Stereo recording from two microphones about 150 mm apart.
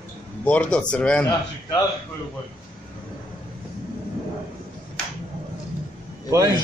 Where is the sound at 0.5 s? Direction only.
5° left (ahead or behind).